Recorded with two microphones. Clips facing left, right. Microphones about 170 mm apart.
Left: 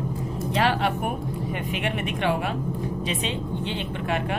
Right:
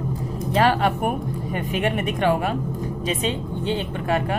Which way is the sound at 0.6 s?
45° right (ahead or behind).